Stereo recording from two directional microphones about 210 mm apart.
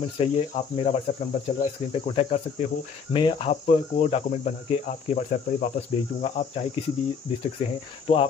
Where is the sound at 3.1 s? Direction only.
25° left (ahead or behind).